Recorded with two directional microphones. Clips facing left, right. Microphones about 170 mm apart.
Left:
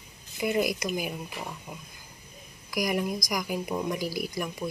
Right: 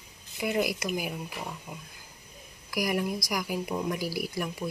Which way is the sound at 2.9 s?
15° left (ahead or behind).